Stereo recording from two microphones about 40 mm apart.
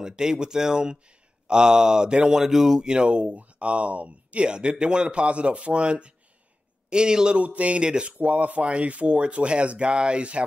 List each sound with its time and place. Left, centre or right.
0.0 s speech: centre; by 4.5 s right
4.5 s speech: right
7.3 s speech: right